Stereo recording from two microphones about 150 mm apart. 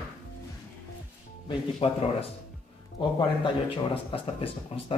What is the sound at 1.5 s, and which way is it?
Speech, 40° left (ahead or behind).